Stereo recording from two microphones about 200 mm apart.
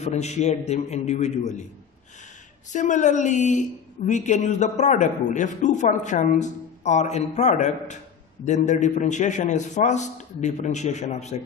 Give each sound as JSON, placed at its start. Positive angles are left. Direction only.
{"t": 0.0, "sound": "speech", "side_deg": 35}
{"t": 2.7, "sound": "speech", "side_deg": 35}